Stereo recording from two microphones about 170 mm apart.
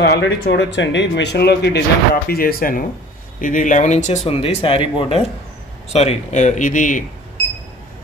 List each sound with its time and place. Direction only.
0.0 s speech: 75° left (ahead or behind)
2.2 s speech: 60° left (ahead or behind)